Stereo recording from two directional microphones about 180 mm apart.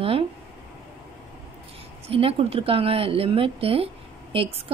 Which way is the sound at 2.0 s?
30° right (ahead or behind).